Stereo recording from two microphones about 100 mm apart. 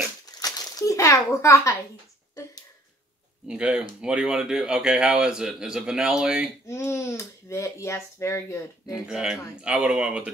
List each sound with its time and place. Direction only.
0.4 s a sound: 35° left (ahead or behind)
3.4 s a man's voice: 10° right (ahead or behind)
6.7 s speech: 30° left (ahead or behind)
8.9 s a man's voice: 5° right (ahead or behind)